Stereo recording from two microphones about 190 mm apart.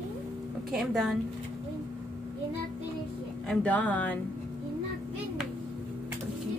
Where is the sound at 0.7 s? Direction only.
Centre (ahead or behind).